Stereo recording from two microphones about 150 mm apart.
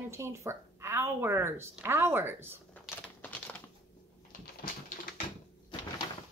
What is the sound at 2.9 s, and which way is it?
Crumpling, 10° left (ahead or behind).